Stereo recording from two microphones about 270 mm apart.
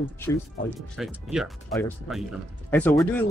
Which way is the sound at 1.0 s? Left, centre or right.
Centre.